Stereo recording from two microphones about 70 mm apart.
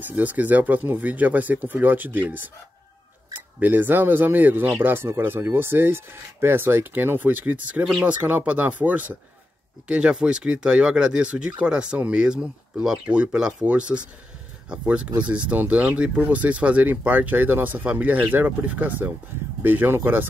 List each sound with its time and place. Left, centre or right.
0.0 s speech: right